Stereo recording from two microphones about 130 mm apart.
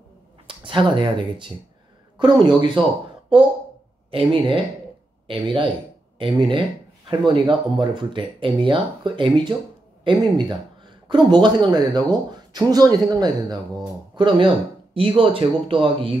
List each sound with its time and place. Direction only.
0.5 s speech: 40° right (ahead or behind)
4.1 s speech: 45° right (ahead or behind)